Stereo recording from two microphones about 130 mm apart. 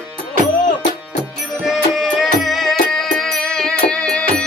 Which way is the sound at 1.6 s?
Centre (ahead or behind).